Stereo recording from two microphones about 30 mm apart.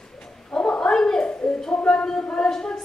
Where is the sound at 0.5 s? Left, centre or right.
Left.